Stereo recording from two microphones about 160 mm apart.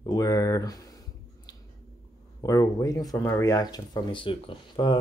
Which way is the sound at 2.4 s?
20° left (ahead or behind).